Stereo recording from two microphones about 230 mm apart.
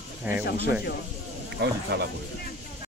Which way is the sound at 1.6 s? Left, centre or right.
Right.